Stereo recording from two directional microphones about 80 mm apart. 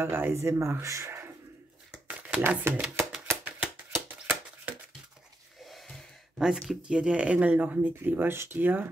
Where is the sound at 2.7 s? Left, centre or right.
Right.